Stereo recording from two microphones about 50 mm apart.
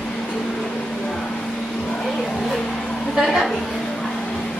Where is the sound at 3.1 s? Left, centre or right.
Centre.